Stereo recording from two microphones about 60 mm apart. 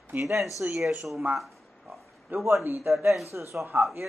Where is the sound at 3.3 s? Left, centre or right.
Right.